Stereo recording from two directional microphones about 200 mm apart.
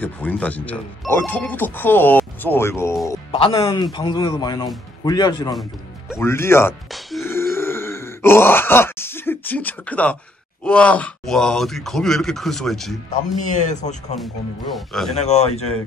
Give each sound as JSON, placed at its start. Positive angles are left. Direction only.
{"t": 0.0, "sound": "speech", "side_deg": 10}
{"t": 3.3, "sound": "speech", "side_deg": 25}
{"t": 6.9, "sound": "grunt", "side_deg": 0}
{"t": 7.2, "sound": "grunt", "side_deg": 10}
{"t": 10.6, "sound": "speech", "side_deg": 5}
{"t": 13.4, "sound": "speech", "side_deg": 40}
{"t": 14.2, "sound": "speech", "side_deg": 0}
{"t": 15.1, "sound": "speech", "side_deg": 35}